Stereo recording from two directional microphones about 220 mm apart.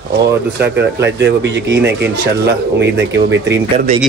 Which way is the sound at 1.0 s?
50° right (ahead or behind).